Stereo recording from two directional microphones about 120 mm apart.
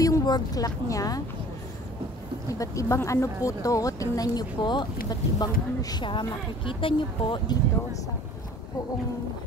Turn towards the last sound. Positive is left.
turn(degrees=45)  # may be behind; listen again after turning